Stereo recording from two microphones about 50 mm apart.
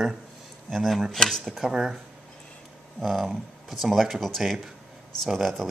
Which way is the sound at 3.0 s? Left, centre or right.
Centre.